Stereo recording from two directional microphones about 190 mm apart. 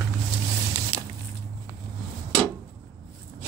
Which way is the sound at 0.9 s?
15° right (ahead or behind).